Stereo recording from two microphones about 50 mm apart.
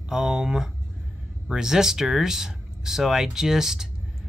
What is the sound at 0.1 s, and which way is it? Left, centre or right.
Speech, centre.